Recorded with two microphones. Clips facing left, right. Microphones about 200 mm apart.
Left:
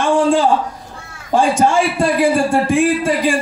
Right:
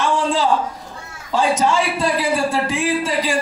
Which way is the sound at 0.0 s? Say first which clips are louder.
Left 5 dB; 50° left (ahead or behind).